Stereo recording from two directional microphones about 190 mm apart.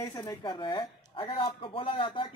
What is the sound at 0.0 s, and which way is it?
Speech, 20° left (ahead or behind).